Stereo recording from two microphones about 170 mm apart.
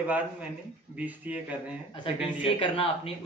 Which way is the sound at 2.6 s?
30° left (ahead or behind).